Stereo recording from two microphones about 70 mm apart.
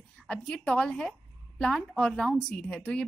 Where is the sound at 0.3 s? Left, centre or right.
Centre.